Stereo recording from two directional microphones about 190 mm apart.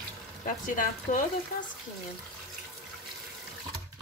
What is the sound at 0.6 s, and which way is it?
Speech, 45° left (ahead or behind).